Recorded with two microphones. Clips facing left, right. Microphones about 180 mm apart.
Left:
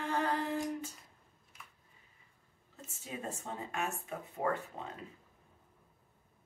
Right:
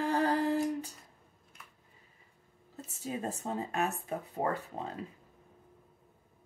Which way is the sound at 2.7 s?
35° right (ahead or behind).